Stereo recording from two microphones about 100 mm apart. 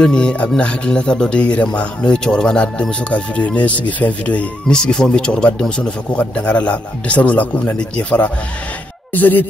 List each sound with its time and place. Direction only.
0.0 s speech: 10° left (ahead or behind)